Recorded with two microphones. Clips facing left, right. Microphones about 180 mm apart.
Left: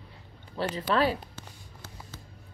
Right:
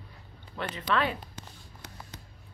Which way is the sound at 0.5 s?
35° left (ahead or behind).